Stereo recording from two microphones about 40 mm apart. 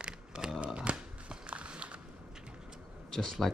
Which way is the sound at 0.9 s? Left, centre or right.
Right.